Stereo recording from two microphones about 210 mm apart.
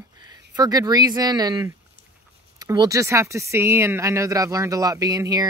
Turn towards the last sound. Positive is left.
turn(degrees=-15)  # may be behind; listen again after turning